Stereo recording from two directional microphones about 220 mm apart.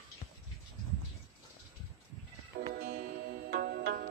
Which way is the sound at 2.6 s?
40° right (ahead or behind).